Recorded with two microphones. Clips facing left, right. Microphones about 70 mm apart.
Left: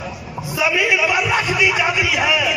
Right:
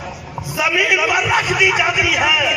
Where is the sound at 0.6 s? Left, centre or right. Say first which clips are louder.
Right 1 dB; right.